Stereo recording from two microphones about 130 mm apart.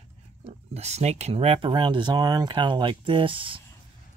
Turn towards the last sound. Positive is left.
turn(degrees=-40)  # may be behind; listen again after turning